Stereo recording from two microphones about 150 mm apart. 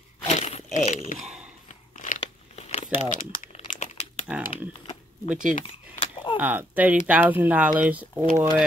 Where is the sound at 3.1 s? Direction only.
60° left (ahead or behind).